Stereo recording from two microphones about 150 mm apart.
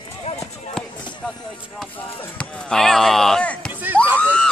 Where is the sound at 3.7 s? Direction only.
10° right (ahead or behind).